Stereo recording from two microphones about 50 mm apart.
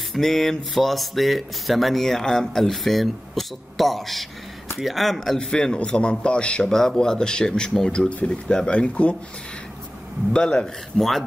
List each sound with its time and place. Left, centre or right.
0.1 s speech: centre
5.5 s a man's voice: centre
8.1 s speech: left
10.3 s a man's voice: centre
11.0 s speech: centre